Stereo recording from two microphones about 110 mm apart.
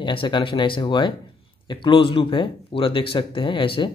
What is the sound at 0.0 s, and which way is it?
Speech, 50° left (ahead or behind).